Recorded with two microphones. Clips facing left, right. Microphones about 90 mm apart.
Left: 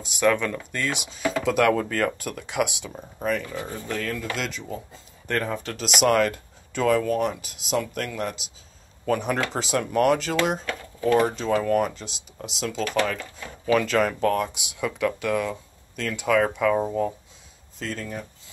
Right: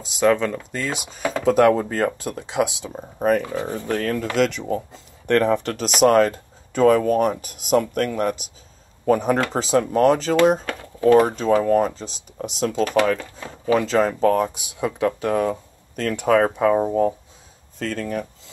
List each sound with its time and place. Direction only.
0.0 s speech: 25° right (ahead or behind); by 3.4 s 40° right (ahead or behind)
3.6 s speech: 55° right (ahead or behind)
5.7 s speech: 40° right (ahead or behind)
11.6 s speech: 30° right (ahead or behind)
13.7 s speech: 25° right (ahead or behind)
16.0 s speech: 50° right (ahead or behind)
17.7 s speech: 50° right (ahead or behind)